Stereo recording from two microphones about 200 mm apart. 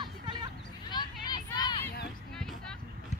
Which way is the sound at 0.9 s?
20° left (ahead or behind).